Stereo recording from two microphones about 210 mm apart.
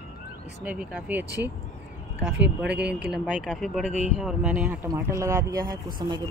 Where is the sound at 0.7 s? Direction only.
5° right (ahead or behind).